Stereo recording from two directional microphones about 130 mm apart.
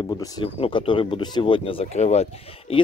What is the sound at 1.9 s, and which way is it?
Speech, 60° left (ahead or behind).